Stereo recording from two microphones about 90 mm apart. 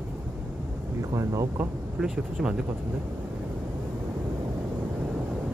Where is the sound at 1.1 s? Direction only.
35° right (ahead or behind).